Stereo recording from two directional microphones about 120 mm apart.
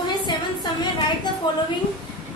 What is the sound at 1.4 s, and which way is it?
Speech, 40° left (ahead or behind).